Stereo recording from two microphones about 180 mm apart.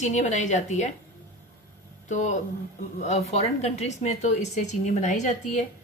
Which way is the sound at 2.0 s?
45° left (ahead or behind).